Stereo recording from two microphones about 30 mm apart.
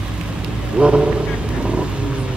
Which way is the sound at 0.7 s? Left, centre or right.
Right.